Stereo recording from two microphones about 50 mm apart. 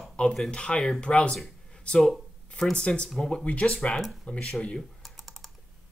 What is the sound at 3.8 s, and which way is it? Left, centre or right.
Speech, centre.